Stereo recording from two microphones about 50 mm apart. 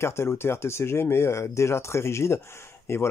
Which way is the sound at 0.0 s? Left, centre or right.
Left.